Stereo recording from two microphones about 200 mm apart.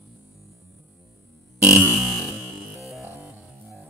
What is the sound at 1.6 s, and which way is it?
Music, 5° right (ahead or behind).